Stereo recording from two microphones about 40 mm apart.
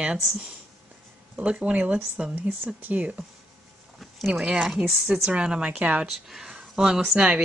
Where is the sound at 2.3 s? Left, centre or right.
Right.